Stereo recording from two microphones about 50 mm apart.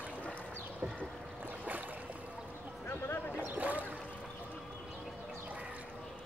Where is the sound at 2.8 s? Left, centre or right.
Left.